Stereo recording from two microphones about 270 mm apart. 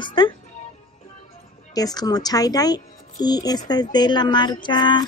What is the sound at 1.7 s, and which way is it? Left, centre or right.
Speech, centre.